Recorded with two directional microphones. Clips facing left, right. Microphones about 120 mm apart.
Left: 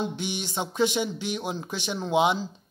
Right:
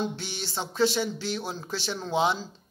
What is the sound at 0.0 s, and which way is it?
Speech, 15° left (ahead or behind).